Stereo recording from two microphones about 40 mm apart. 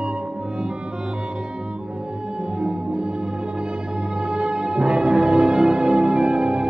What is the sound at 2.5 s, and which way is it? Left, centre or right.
Music, right.